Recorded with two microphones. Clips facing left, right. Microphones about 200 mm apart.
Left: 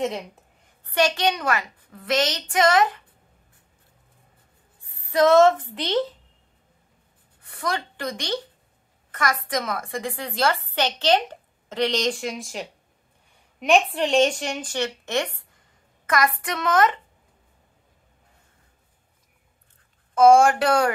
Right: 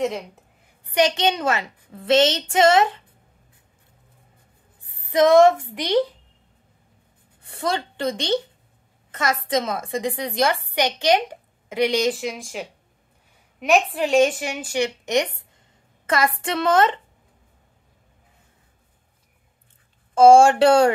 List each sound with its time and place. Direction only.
0.9 s a woman's voice: 20° right (ahead or behind)
4.8 s a woman's voice: 20° right (ahead or behind)
7.4 s a woman's voice: 25° right (ahead or behind)
16.1 s a woman's voice: 25° right (ahead or behind)
20.2 s a woman's voice: 30° right (ahead or behind)